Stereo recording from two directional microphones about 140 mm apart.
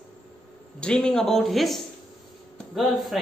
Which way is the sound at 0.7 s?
5° left (ahead or behind).